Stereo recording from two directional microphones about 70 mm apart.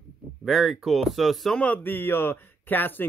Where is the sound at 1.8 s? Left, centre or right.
Left.